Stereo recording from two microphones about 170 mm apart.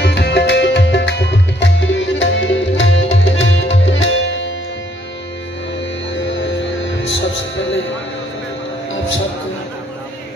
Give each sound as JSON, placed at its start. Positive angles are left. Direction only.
{"t": 0.0, "sound": "music", "side_deg": 90}
{"t": 6.1, "sound": "music", "side_deg": 90}